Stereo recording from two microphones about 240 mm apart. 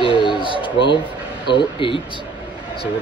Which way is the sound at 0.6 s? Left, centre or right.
Left.